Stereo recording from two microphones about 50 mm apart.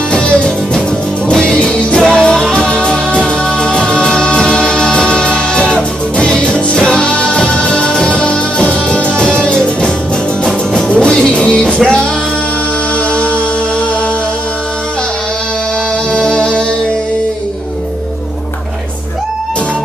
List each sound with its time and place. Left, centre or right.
0.1 s music: left
13.1 s music: left
16.1 s music: centre